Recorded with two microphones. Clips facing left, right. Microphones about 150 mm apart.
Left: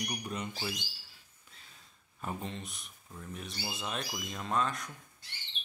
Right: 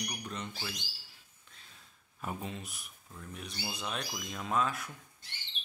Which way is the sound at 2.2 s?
5° right (ahead or behind).